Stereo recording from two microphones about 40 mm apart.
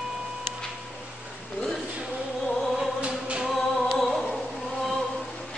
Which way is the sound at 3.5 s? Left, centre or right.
Centre.